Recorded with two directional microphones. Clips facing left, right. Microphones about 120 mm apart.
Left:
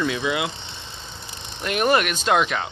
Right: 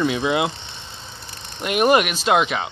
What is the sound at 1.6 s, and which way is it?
Speech, 15° right (ahead or behind).